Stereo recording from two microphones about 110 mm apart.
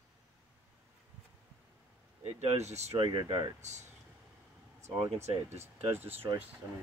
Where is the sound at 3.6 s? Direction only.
90° right.